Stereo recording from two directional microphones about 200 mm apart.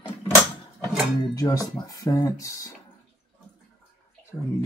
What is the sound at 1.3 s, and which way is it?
Speech, 15° left (ahead or behind).